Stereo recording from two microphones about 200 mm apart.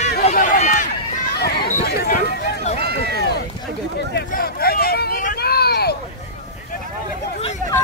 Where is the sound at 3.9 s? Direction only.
50° left (ahead or behind).